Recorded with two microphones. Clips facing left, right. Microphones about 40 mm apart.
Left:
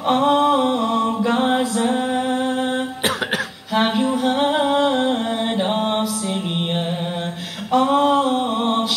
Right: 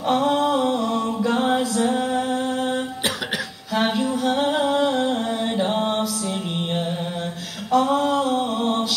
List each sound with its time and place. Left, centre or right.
0.0 s mantra: left
3.7 s music: left
5.6 s mantra: left
7.7 s a sound: left